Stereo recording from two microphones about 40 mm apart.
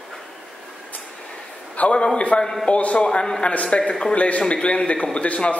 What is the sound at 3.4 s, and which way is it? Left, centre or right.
Speech, left.